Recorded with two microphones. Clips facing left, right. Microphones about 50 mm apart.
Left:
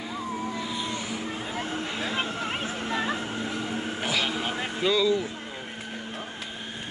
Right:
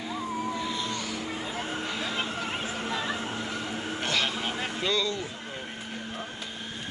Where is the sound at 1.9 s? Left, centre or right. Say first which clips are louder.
Left 2 dB; centre.